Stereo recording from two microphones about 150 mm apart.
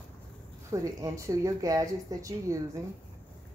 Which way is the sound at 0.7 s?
20° right (ahead or behind).